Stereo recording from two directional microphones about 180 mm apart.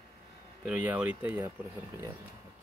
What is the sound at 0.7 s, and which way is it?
Speech, 5° right (ahead or behind).